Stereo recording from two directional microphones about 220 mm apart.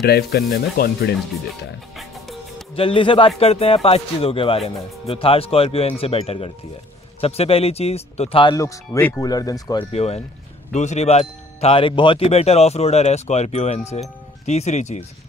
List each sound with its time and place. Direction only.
0.0 s speech: 45° left (ahead or behind)
2.0 s music: centre (ahead or behind)
2.7 s speech: 25° left (ahead or behind)